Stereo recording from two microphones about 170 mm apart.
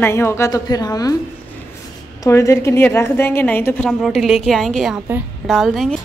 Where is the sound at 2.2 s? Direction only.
20° left (ahead or behind); by 6.0 s centre (ahead or behind).